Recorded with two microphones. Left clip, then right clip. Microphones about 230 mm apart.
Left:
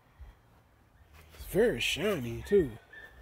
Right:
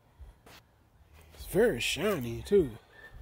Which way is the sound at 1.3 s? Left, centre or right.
Centre.